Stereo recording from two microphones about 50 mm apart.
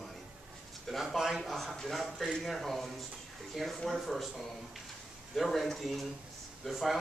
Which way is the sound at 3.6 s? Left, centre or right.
Centre.